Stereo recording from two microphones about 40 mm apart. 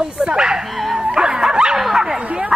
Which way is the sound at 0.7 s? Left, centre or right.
Centre.